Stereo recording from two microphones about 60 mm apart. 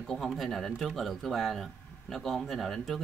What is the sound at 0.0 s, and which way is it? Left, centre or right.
Speech, centre.